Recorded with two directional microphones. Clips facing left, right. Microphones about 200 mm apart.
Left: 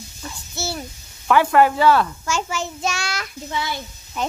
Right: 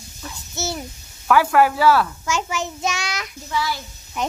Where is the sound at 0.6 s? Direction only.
20° right (ahead or behind).